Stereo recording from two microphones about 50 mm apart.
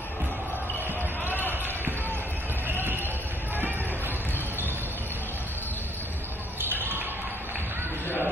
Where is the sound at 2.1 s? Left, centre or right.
Right.